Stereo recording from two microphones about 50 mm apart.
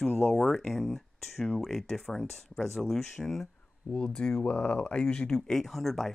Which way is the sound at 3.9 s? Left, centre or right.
Centre.